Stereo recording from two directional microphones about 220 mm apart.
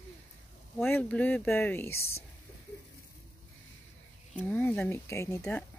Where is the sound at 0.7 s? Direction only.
10° left (ahead or behind).